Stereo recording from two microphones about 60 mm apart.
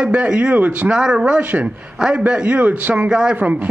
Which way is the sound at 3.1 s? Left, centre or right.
Centre.